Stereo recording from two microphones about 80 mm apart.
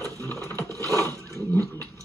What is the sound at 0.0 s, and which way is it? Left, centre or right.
Scrape, right.